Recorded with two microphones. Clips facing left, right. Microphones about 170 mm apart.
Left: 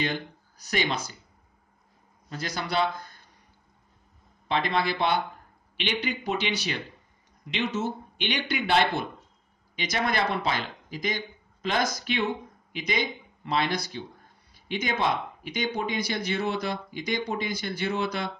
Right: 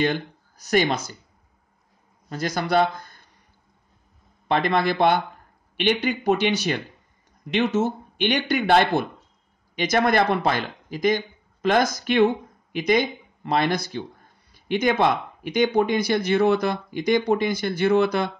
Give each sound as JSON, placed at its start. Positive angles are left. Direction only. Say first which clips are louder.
{"t": 0.6, "sound": "speech", "louder": "right 7 dB", "side_deg": -45}
{"t": 2.2, "sound": "speech", "louder": "right 7 dB", "side_deg": -45}
{"t": 4.5, "sound": "speech", "louder": "right 5 dB", "side_deg": -50}